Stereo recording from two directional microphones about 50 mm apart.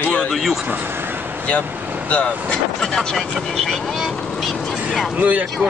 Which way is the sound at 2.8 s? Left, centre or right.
Centre.